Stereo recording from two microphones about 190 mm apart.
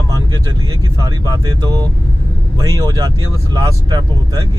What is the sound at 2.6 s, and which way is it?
Speech, 20° right (ahead or behind).